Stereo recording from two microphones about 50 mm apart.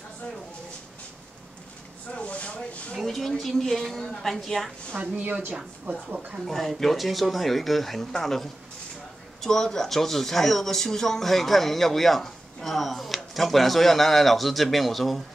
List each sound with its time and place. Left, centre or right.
2.1 s a sound: left
3.0 s a woman's voice: centre
4.9 s a woman's voice: right
6.0 s speech: centre
6.4 s a woman's voice: centre